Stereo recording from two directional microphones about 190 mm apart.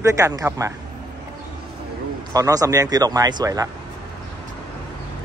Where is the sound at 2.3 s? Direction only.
20° right (ahead or behind).